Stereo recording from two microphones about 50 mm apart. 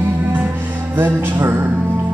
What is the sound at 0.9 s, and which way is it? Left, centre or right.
Music, right.